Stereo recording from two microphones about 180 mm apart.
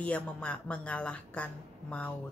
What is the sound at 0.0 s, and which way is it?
A woman's voice, 5° left (ahead or behind).